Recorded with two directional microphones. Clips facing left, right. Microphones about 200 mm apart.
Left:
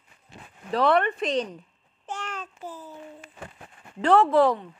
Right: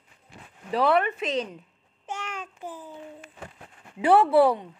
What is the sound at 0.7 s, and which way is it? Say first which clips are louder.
Speech: left 1 dB; 5° right (ahead or behind).